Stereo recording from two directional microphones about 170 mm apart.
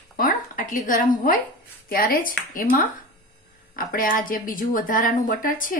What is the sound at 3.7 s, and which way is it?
A woman's voice, 55° left (ahead or behind).